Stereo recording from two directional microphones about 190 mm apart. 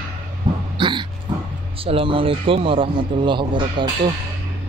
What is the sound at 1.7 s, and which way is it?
A man's voice, 30° right (ahead or behind).